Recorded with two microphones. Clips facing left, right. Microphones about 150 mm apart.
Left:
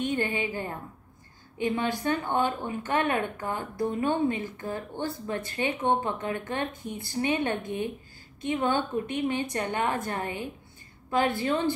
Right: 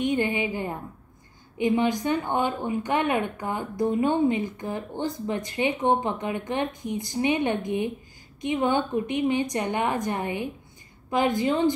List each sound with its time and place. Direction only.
0.0 s a woman's voice: 15° right (ahead or behind)